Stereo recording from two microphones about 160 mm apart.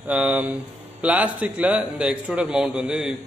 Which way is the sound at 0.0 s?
10° right (ahead or behind).